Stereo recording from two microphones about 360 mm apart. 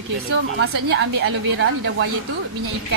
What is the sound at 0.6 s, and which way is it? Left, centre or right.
A woman's voice, right.